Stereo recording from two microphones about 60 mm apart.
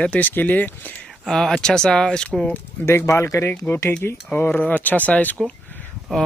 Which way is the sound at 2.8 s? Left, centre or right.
Left.